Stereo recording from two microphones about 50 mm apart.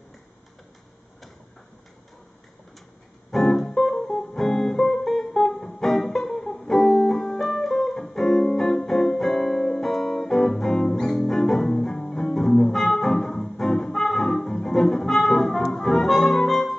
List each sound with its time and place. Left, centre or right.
3.3 s music: centre